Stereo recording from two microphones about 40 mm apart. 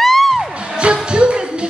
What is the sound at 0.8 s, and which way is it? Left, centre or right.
Music, right.